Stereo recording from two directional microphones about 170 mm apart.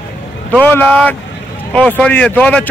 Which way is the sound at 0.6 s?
10° left (ahead or behind).